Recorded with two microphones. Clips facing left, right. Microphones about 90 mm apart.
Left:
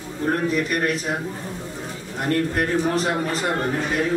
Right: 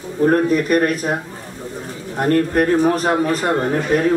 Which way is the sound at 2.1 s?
45° right (ahead or behind).